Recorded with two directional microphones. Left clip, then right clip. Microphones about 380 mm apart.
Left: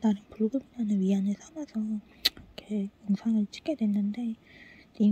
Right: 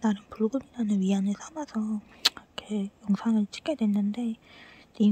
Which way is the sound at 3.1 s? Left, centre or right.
Centre.